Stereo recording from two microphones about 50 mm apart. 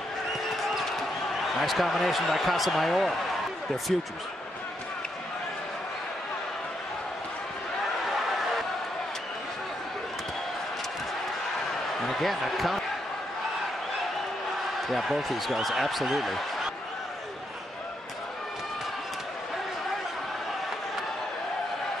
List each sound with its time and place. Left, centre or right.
1.6 s speech: centre
12.1 s speech: centre
14.9 s speech: centre